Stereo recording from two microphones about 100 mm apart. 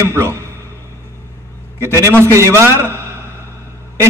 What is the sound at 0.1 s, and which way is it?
Speech, 30° right (ahead or behind).